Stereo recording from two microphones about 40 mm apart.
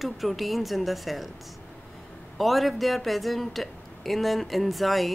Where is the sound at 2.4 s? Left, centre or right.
Centre.